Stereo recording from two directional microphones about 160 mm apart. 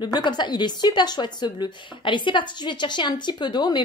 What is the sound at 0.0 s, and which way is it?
A woman's voice, 25° left (ahead or behind).